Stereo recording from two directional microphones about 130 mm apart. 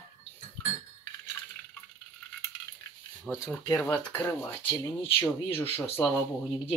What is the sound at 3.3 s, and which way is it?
Speech, 20° left (ahead or behind).